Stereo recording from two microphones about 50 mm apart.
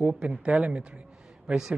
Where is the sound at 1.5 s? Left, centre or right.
Centre.